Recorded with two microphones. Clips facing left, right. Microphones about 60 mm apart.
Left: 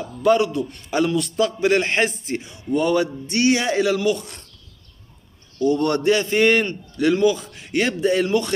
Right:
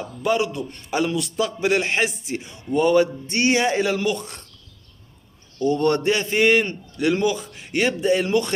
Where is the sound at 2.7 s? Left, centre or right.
Right.